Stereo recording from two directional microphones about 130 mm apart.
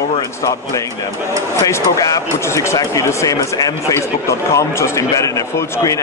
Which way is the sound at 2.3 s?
20° left (ahead or behind).